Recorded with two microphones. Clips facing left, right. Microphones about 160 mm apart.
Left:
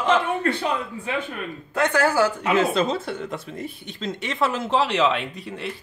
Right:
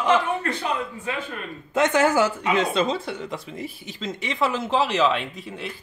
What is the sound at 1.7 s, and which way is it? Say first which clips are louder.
Speech: right 2 dB; 20° right (ahead or behind).